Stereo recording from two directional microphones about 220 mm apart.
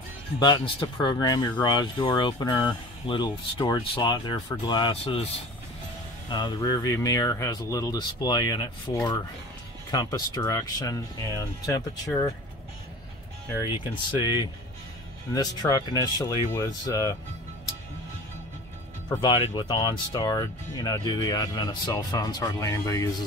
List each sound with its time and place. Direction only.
0.4 s speech: 20° left (ahead or behind)
6.3 s speech: 20° left (ahead or behind)
13.6 s speech: 20° left (ahead or behind)
19.2 s speech: 20° left (ahead or behind)